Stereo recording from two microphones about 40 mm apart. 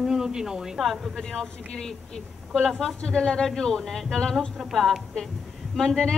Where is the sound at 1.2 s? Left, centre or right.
Centre.